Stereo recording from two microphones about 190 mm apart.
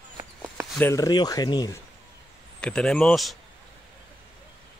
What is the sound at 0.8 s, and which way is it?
Speech, 15° left (ahead or behind).